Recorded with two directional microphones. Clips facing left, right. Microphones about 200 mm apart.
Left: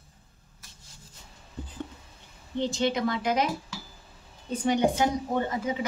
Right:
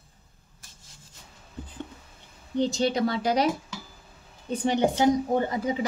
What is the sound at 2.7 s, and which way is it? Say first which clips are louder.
Speech: right 2 dB; 35° right (ahead or behind).